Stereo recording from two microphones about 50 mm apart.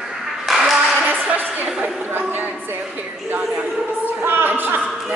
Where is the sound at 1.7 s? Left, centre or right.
Centre.